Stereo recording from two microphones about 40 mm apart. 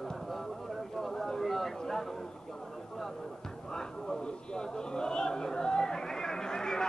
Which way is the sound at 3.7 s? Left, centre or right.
Centre.